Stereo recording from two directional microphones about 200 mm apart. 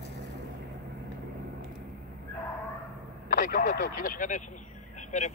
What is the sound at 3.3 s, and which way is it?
Speech, 40° left (ahead or behind).